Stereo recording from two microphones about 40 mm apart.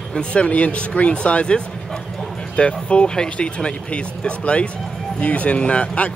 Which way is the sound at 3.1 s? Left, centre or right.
Centre.